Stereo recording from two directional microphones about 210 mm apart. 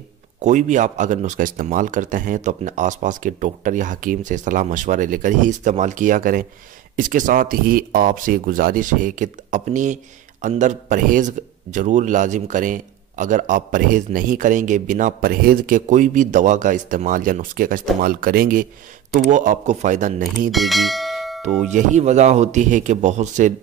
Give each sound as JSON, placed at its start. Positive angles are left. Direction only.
{"t": 0.4, "sound": "a man's voice", "side_deg": -35}
{"t": 20.5, "sound": "bell", "side_deg": 0}
{"t": 21.5, "sound": "a man's voice", "side_deg": -35}